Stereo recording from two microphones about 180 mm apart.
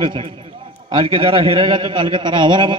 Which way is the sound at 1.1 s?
30° right (ahead or behind).